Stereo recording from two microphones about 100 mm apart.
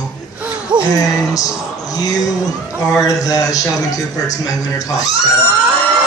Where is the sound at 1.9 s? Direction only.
40° left (ahead or behind).